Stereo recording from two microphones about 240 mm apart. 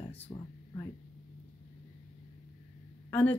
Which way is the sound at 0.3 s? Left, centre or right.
Left.